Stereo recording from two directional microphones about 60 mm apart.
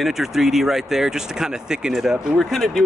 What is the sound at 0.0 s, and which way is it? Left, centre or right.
Speech, centre.